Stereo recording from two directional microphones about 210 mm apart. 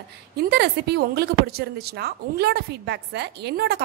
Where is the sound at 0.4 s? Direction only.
50° right (ahead or behind).